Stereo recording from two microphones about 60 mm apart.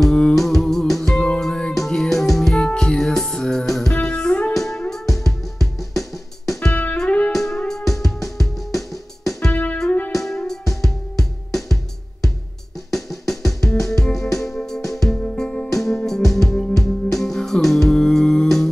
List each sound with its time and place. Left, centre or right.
0.0 s music: centre
1.7 s music: centre
4.0 s music: centre
4.6 s music: centre
6.7 s music: left
7.3 s music: centre
9.5 s music: left
10.1 s music: centre
15.3 s music: centre